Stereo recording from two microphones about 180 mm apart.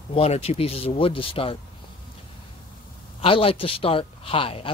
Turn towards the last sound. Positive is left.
turn(degrees=30)  # may be behind; listen again after turning